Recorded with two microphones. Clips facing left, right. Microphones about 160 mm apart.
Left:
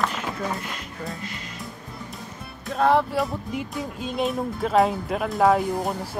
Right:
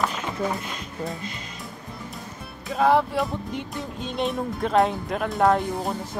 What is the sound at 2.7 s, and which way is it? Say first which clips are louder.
Speech: even; centre (ahead or behind).